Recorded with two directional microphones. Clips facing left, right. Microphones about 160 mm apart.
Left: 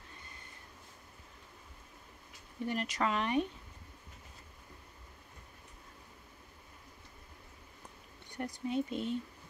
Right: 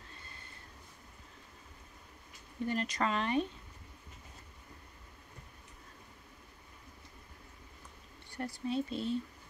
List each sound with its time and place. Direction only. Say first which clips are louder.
2.6 s speech: even; 15° left (ahead or behind)
8.3 s speech: even; 15° left (ahead or behind)